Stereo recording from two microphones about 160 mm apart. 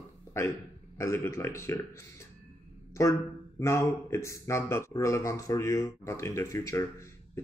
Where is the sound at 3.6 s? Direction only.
15° left (ahead or behind).